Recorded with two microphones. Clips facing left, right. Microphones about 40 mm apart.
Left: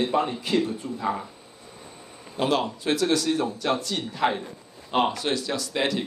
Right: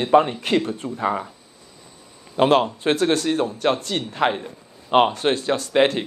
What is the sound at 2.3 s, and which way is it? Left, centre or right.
A man's voice, right.